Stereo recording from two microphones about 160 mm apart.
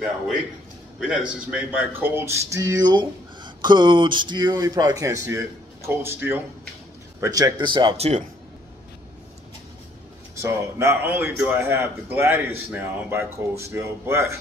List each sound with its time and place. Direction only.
1.5 s speech: 10° right (ahead or behind); by 8.1 s 30° right (ahead or behind)
10.4 s a man's voice: 15° right (ahead or behind)